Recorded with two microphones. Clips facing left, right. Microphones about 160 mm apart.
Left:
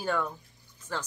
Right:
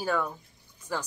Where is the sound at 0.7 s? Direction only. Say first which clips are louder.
Right 2 dB; 10° right (ahead or behind).